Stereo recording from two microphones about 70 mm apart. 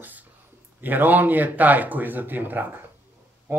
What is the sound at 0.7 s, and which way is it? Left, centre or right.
Speech, right.